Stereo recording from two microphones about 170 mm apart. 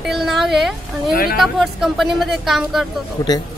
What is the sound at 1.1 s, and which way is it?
Speech, 60° left (ahead or behind).